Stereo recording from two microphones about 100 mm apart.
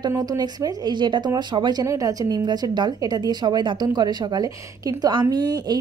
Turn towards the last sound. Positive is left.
turn(degrees=-45)  # may be behind; listen again after turning